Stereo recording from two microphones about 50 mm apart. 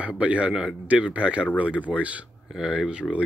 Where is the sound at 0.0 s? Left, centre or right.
Right.